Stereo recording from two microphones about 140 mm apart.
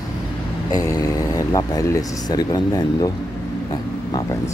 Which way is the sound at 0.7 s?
25° left (ahead or behind).